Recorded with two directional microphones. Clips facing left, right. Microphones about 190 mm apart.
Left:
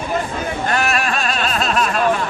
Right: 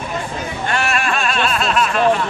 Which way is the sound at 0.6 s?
40° left (ahead or behind).